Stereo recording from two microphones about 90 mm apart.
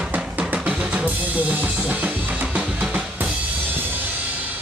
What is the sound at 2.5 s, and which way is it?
Drum, 10° right (ahead or behind).